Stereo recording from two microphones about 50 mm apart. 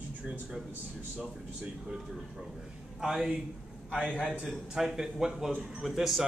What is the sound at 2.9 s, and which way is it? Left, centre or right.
Speech, centre.